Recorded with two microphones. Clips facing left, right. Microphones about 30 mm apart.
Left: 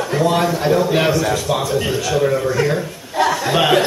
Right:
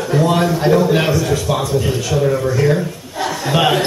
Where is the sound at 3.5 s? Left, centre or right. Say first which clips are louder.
Right 1 dB; centre.